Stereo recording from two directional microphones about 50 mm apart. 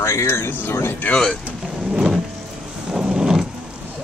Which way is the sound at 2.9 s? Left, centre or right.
Centre.